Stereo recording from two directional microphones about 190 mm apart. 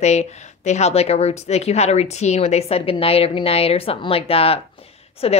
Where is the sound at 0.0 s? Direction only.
35° left (ahead or behind).